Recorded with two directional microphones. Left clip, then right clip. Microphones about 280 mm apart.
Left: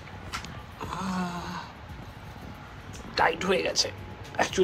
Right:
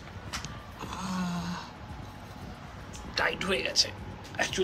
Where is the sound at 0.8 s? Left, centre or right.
Centre.